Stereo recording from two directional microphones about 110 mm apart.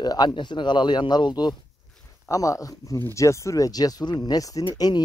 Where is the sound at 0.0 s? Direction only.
40° left (ahead or behind).